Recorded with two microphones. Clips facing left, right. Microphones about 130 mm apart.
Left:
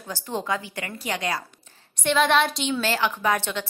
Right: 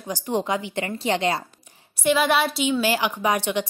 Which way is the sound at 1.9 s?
5° right (ahead or behind).